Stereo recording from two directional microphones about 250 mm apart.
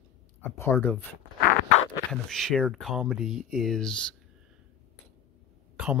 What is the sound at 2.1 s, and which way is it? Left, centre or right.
Speech, centre.